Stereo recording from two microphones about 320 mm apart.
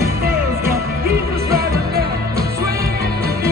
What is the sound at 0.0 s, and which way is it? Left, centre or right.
Music, right.